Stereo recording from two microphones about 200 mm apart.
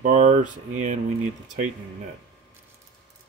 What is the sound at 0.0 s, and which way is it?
Speech, 40° right (ahead or behind).